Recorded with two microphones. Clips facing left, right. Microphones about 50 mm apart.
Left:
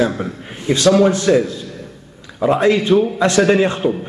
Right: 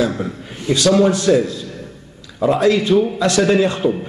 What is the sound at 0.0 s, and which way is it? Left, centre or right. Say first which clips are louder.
Speech: left 1 dB; left.